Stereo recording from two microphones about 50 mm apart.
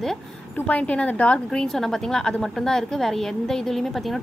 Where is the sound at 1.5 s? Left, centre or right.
Centre.